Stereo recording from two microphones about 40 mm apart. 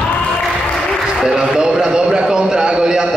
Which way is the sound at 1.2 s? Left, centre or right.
Centre.